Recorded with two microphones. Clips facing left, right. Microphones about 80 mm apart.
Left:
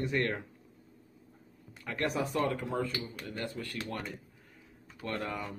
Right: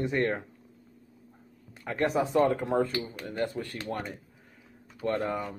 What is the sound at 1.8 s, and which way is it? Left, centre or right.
Speech, right.